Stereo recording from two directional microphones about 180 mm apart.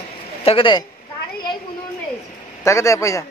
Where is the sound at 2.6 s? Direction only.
15° left (ahead or behind).